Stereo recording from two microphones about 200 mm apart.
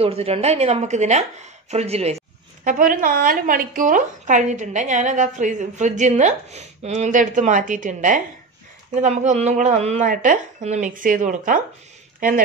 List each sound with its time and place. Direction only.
0.0 s a woman's voice: 30° right (ahead or behind)